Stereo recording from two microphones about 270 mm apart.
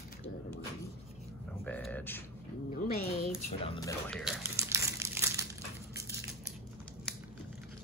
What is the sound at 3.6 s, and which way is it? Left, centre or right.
Speech, centre.